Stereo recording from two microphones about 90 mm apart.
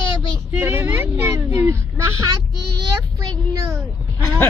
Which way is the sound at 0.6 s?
25° right (ahead or behind).